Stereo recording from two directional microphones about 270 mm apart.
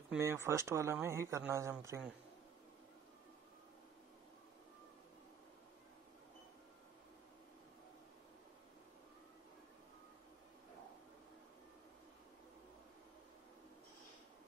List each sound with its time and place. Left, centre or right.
0.1 s speech: centre